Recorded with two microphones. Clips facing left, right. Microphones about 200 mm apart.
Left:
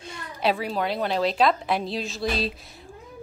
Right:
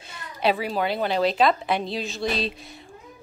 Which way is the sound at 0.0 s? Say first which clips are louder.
Right 1 dB; centre (ahead or behind).